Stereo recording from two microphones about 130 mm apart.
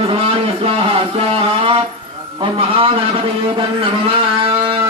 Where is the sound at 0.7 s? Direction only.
45° right (ahead or behind).